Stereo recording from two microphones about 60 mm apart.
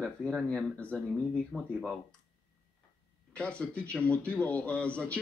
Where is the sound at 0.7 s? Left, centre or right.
Left.